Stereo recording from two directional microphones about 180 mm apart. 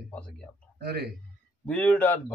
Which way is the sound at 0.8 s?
65° right (ahead or behind).